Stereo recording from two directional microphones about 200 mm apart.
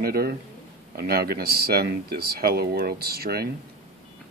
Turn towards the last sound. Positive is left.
turn(degrees=-50)  # may be behind; listen again after turning